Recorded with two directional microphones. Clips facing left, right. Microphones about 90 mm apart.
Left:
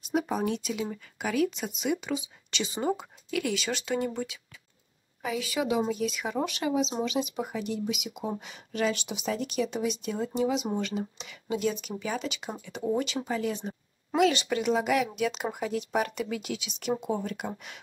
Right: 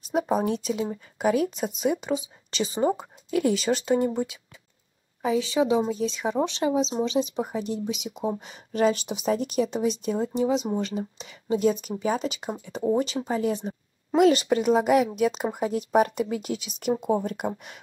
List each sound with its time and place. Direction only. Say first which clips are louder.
0.3 s a woman's voice: right 5 dB; 35° right (ahead or behind)